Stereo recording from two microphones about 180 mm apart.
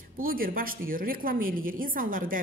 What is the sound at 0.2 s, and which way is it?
A woman's voice, 55° right (ahead or behind).